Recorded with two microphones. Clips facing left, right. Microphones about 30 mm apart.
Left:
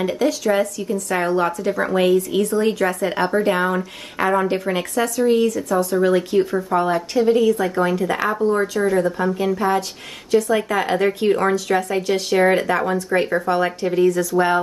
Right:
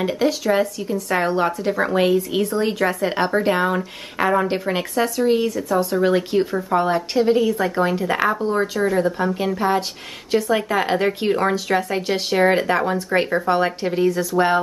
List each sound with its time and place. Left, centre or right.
0.0 s speech: centre
9.0 s speech: centre